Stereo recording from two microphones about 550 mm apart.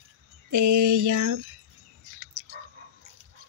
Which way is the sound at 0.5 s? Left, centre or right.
Right.